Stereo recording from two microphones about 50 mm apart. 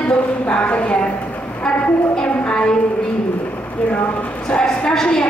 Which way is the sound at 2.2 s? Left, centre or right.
Left.